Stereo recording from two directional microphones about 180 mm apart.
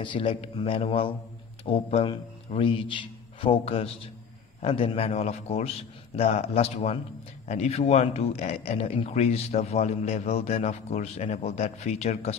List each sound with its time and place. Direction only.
0.0 s a man's voice: 30° left (ahead or behind)